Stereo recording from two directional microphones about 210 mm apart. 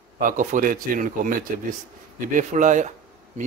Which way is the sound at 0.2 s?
40° right (ahead or behind).